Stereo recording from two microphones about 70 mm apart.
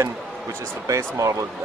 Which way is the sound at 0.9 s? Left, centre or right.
Right.